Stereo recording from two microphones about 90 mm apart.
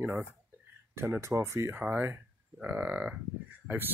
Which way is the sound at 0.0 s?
20° right (ahead or behind).